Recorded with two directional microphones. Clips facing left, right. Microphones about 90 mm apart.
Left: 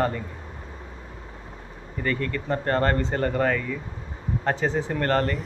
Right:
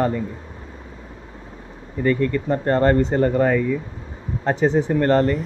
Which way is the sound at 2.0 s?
15° right (ahead or behind).